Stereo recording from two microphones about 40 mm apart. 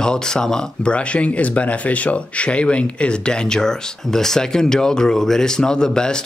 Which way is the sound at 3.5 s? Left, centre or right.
Centre.